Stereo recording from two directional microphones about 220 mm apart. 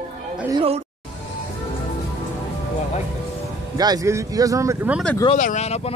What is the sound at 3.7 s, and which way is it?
Speech, 15° right (ahead or behind).